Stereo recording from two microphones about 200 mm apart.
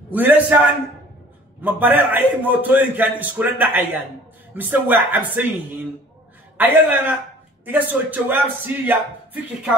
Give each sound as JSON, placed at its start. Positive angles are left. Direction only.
{"t": 0.1, "sound": "a man's voice", "side_deg": -10}
{"t": 6.6, "sound": "a man's voice", "side_deg": -10}